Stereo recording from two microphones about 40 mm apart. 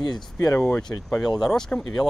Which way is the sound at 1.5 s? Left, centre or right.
Centre.